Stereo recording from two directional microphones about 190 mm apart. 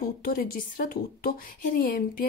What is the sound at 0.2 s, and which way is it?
A woman's voice, 50° left (ahead or behind).